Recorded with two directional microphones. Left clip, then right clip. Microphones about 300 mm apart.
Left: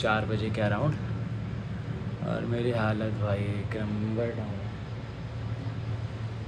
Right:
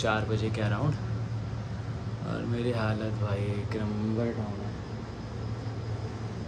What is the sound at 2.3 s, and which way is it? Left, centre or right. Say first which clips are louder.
Speech: left 2 dB; centre.